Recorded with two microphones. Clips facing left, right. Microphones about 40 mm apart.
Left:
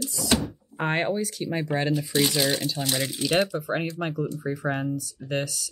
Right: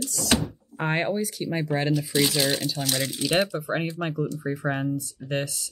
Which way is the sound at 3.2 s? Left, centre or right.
Centre.